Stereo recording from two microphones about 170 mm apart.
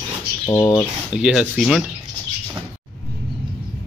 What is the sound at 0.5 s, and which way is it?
Speech, 20° left (ahead or behind).